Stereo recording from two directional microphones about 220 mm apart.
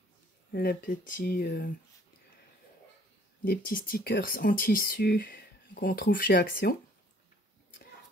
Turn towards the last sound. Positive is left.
turn(degrees=40)  # may be behind; listen again after turning